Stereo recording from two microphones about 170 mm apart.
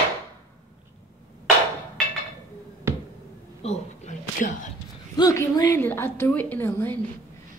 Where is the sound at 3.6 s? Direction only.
40° left (ahead or behind).